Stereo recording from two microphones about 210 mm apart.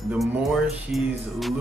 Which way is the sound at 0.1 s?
Centre (ahead or behind).